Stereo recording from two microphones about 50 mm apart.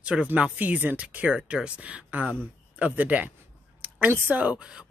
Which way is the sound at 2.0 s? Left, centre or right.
Right.